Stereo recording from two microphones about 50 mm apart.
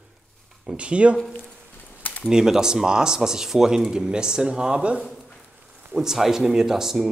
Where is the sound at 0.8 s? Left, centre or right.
Right.